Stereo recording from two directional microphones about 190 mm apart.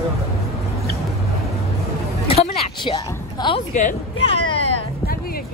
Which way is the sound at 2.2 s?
30° left (ahead or behind).